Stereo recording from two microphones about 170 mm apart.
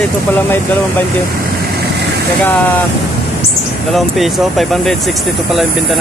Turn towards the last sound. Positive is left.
turn(degrees=0)  # may be behind; listen again after turning